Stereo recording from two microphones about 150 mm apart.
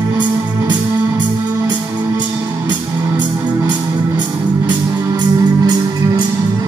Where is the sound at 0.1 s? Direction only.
30° right (ahead or behind).